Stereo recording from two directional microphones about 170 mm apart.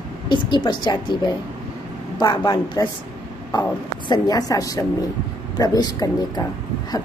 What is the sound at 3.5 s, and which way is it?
A woman's voice, 25° left (ahead or behind).